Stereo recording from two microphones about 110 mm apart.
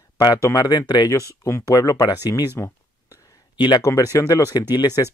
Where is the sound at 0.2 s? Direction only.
35° left (ahead or behind).